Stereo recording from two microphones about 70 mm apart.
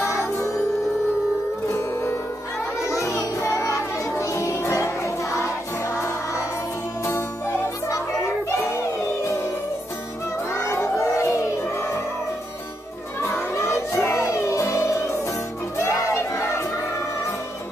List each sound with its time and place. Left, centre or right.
0.0 s music: left
1.7 s music: left
2.9 s music: left
7.9 s children playing: left
9.2 s music: left
10.5 s music: left
13.2 s music: left
15.8 s a sound: left